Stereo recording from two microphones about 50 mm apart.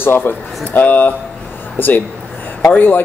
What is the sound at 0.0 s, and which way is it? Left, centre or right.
Speech, left.